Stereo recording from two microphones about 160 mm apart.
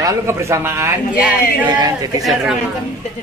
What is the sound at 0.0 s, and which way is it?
A man's voice, 20° right (ahead or behind).